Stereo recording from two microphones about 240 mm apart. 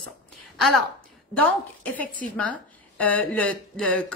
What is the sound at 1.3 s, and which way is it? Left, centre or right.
A woman's voice, centre.